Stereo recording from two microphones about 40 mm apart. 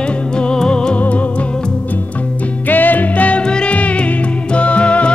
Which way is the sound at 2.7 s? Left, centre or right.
Left.